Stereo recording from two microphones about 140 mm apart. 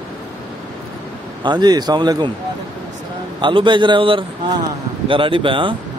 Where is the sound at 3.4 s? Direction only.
35° right (ahead or behind).